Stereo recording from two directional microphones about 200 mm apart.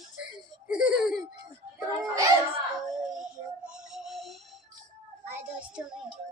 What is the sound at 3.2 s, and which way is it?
Music, 5° right (ahead or behind).